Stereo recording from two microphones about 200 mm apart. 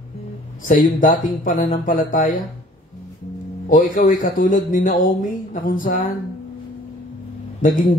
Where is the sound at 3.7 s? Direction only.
40° left (ahead or behind).